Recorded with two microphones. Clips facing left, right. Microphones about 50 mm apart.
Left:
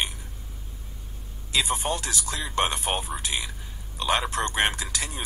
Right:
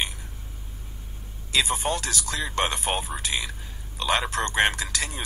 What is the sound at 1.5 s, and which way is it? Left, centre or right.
Speech, right.